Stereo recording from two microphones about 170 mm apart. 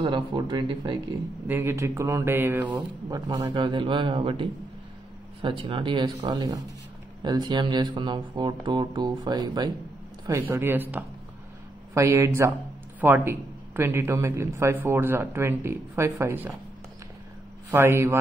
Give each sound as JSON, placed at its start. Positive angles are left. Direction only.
{"t": 0.0, "sound": "speech", "side_deg": -30}
{"t": 1.5, "sound": "a man's voice", "side_deg": -15}
{"t": 2.7, "sound": "a man's voice", "side_deg": -25}
{"t": 17.6, "sound": "a man's voice", "side_deg": -15}